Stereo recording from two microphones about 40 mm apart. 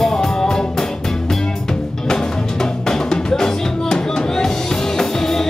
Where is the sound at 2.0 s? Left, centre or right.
Centre.